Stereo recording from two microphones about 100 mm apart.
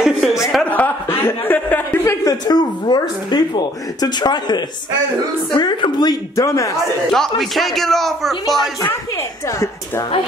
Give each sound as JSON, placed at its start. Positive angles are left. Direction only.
{"t": 0.0, "sound": "a sound", "side_deg": -5}
{"t": 0.7, "sound": "chuckle", "side_deg": 15}
{"t": 2.2, "sound": "speech", "side_deg": 40}
{"t": 6.3, "sound": "a man's voice", "side_deg": 30}
{"t": 7.1, "sound": "a man's voice", "side_deg": 5}